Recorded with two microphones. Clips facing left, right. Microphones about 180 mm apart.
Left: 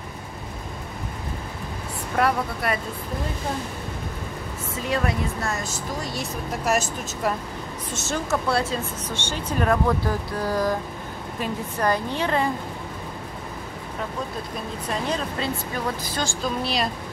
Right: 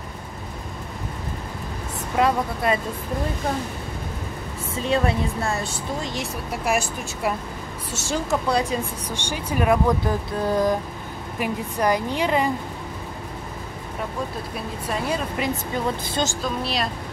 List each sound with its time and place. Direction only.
2.1 s speech: 20° right (ahead or behind)
4.8 s speech: 30° right (ahead or behind)
6.1 s speech: 10° right (ahead or behind)
14.9 s speech: 10° right (ahead or behind)
16.4 s speech: centre (ahead or behind)